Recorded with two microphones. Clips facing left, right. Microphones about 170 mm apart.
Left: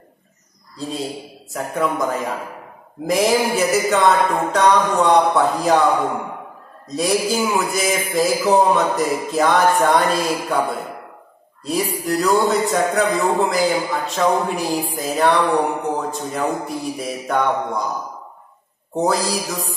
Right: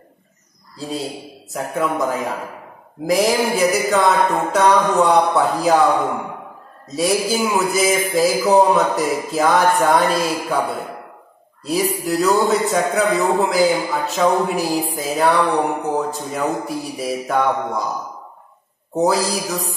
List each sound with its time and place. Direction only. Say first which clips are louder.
1.5 s a man's voice: even; centre (ahead or behind)
11.6 s a man's voice: right 2 dB; centre (ahead or behind)
18.9 s a man's voice: right 2 dB; centre (ahead or behind)